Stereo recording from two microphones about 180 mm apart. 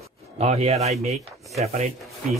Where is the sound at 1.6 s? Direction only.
35° right (ahead or behind).